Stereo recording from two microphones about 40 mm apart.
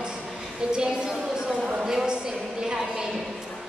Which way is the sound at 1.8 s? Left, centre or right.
Centre.